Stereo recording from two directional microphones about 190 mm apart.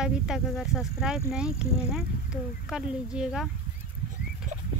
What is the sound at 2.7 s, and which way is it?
Speech, 5° right (ahead or behind).